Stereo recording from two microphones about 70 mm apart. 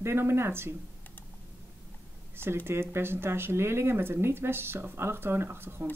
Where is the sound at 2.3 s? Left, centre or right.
Right.